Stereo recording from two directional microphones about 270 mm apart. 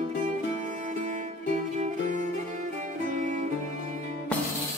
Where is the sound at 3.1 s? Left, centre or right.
Right.